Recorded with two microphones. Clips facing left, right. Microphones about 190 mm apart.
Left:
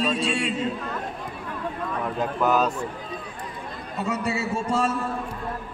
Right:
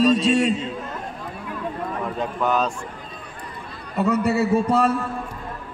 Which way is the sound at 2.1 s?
5° left (ahead or behind).